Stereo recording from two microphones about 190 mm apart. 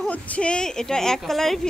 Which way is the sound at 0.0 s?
5° left (ahead or behind).